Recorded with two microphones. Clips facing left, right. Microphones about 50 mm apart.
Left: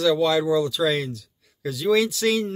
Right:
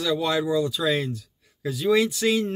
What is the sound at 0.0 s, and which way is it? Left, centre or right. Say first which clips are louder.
Speech: left 4 dB; centre.